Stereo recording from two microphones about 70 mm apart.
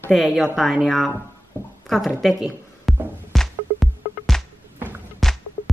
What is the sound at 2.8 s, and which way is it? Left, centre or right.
Music, centre.